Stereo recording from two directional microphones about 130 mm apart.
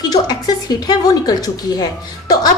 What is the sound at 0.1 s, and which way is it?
A woman's voice, 30° left (ahead or behind).